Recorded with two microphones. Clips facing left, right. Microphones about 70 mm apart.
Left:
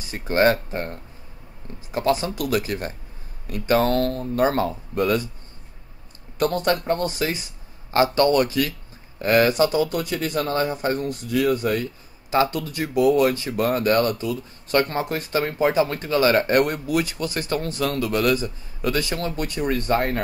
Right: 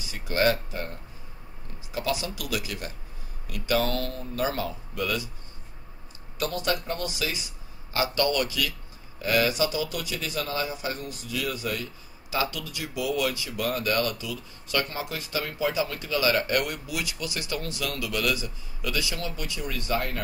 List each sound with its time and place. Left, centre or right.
0.0 s speech: left
6.3 s speech: left